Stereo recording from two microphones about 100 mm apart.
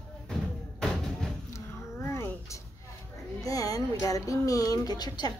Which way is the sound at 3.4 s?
35° left (ahead or behind).